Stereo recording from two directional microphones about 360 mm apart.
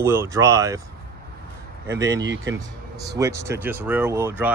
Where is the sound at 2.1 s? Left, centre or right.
Right.